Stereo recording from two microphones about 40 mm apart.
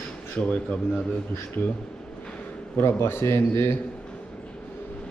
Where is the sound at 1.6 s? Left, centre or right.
Left.